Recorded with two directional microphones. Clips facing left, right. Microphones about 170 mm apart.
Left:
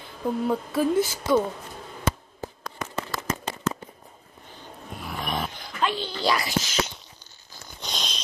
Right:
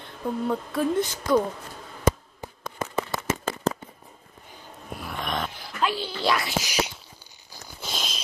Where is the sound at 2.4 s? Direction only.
15° right (ahead or behind).